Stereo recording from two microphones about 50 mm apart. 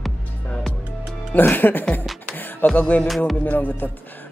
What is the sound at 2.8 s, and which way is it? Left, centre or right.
Speech, left.